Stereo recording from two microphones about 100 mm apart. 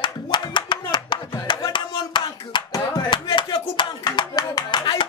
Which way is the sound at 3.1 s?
55° left (ahead or behind).